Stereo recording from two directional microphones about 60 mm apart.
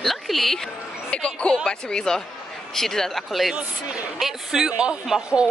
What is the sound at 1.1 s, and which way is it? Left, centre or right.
Speech, centre.